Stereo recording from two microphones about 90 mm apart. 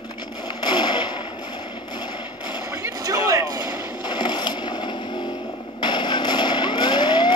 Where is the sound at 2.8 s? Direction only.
40° right (ahead or behind).